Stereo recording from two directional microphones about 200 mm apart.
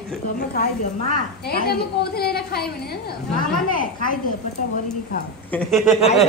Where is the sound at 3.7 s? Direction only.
45° left (ahead or behind).